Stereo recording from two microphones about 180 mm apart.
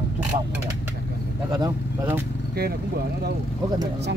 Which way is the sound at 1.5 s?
20° right (ahead or behind).